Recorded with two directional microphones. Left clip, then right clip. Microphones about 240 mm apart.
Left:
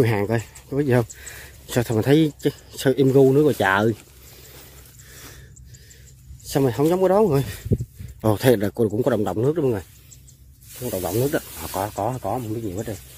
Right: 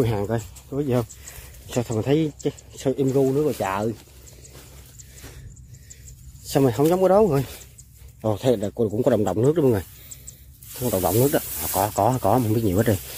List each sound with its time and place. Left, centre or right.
0.0 s speech: left
6.4 s speech: centre
8.2 s speech: left
8.9 s speech: centre
10.9 s speech: centre
11.5 s speech: centre
11.8 s speech: centre
12.2 s speech: right